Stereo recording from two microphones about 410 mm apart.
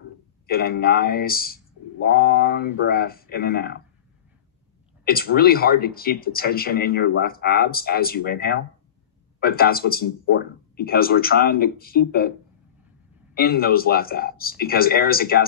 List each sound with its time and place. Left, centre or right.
0.5 s speech: left
5.0 s speech: left